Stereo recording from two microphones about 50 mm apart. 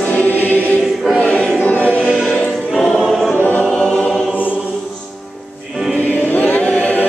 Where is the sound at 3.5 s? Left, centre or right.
Left.